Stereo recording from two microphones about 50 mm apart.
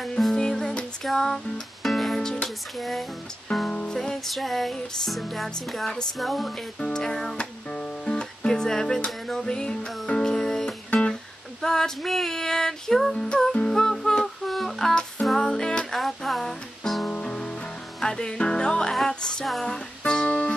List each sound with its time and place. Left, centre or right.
0.2 s music: centre
2.8 s music: centre
3.7 s music: centre
4.0 s music: centre
6.8 s female singing: centre
7.3 s music: left
11.6 s female singing: centre
13.1 s music: centre
15.9 s music: centre
17.1 s music: centre
20.2 s music: left